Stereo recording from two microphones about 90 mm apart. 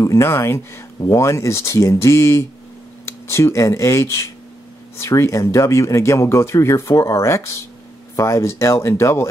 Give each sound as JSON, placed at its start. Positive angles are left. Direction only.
{"t": 0.0, "sound": "speech", "side_deg": 35}